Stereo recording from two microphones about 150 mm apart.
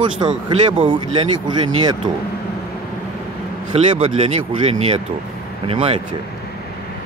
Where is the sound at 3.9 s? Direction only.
40° right (ahead or behind).